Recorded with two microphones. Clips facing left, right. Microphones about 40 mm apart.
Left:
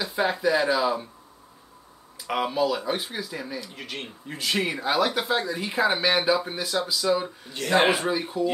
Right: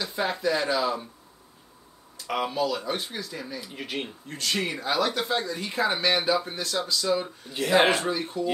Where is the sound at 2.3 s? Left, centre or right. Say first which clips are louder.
Left 2 dB; centre.